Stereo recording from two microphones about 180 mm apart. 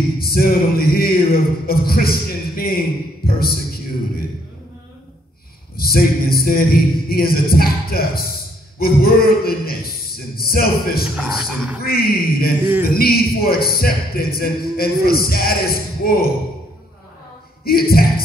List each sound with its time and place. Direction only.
0.2 s speech: 55° left (ahead or behind)
5.8 s speech: 55° left (ahead or behind)
11.1 s speech: centre (ahead or behind)
11.8 s speech: 55° left (ahead or behind)
17.6 s speech: 55° left (ahead or behind)